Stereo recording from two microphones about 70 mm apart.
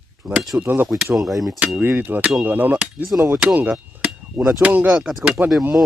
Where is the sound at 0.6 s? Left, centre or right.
Right.